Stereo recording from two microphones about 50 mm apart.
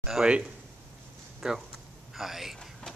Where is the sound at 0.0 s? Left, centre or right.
Centre.